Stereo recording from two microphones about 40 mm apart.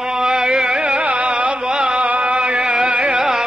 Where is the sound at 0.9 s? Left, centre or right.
Right.